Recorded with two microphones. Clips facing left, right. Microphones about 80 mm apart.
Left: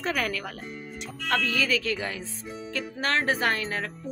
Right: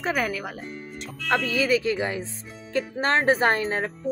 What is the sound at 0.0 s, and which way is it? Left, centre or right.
A woman's voice, centre.